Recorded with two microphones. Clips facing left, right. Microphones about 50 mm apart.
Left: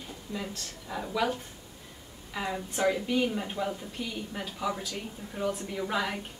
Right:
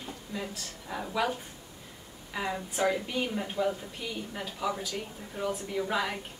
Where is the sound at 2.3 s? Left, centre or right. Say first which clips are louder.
Even; centre.